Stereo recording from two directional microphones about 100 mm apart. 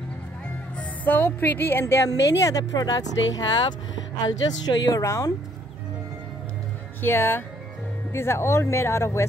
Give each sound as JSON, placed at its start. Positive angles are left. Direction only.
{"t": 0.7, "sound": "a woman's voice", "side_deg": 20}
{"t": 7.0, "sound": "a woman's voice", "side_deg": 20}